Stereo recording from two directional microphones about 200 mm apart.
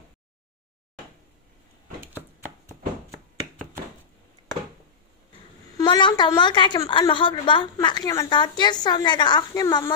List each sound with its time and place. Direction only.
5.8 s a woman's voice: 20° left (ahead or behind)